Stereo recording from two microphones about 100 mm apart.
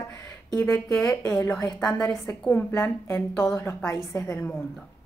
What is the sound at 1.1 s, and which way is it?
Speech, 35° left (ahead or behind).